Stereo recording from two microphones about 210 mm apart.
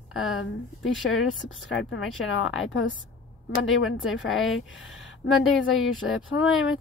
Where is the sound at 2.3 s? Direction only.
65° left (ahead or behind).